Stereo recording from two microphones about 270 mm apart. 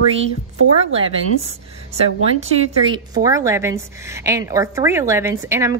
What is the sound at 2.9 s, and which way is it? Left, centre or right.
A woman's voice, centre.